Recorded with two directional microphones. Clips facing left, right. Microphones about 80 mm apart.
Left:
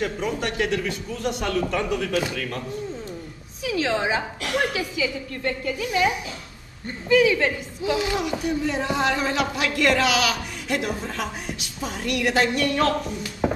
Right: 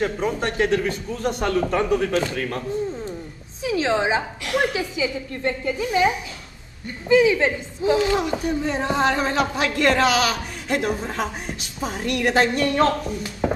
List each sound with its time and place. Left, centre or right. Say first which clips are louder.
0.0 s speech: right 3 dB; right
3.6 s a woman's voice: right 3 dB; right